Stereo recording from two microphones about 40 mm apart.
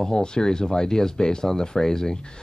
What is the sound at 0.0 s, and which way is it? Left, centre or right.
Speech, centre.